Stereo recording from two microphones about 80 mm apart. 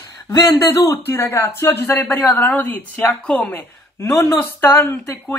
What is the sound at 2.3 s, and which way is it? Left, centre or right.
A woman's voice, left.